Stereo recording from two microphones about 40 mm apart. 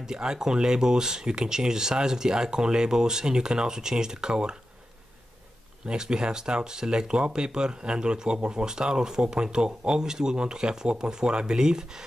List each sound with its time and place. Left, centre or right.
0.0 s speech: centre
5.9 s speech: centre